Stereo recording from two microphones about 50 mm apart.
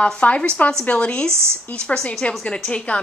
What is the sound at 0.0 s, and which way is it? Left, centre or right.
A woman's voice, left.